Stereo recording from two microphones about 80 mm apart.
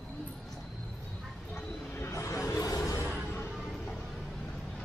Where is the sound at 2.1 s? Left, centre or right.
Left.